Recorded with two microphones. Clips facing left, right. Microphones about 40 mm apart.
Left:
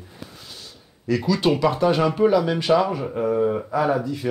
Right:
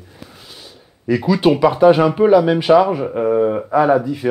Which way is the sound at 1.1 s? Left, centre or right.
Centre.